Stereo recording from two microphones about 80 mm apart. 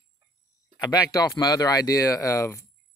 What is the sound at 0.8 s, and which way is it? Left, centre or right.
Speech, left.